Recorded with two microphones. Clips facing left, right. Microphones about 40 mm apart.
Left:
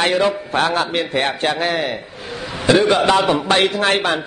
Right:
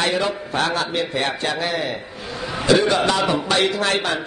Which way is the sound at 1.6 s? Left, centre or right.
Left.